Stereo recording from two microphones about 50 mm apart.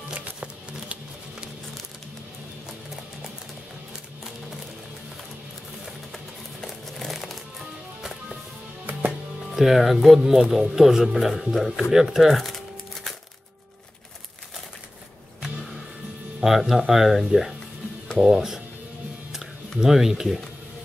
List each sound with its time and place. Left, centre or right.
0.1 s music: right
6.1 s a sound: centre
9.6 s speech: centre
11.9 s crumpling: centre
16.3 s speech: centre
19.8 s speech: centre